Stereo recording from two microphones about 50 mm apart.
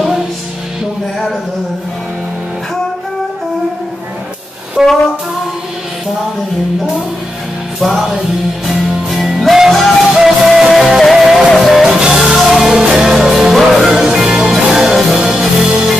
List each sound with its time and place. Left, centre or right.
4.8 s brass instrument: centre
7.8 s music: centre
11.8 s music: centre